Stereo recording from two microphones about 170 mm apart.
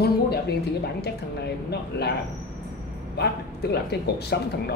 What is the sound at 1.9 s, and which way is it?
Speech, 75° left (ahead or behind).